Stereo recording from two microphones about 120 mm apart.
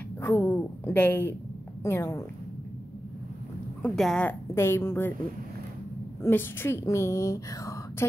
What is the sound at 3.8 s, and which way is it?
Speech, 5° left (ahead or behind).